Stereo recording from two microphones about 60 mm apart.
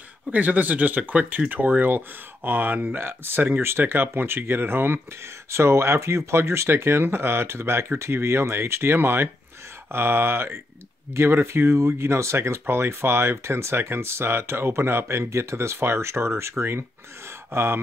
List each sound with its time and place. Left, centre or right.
0.3 s speech: right
5.5 s speech: right